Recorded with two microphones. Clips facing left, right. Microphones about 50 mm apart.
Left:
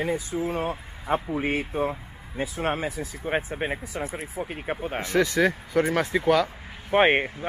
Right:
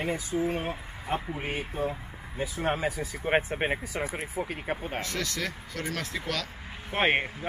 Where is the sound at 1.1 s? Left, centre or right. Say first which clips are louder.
Left 6 dB; left.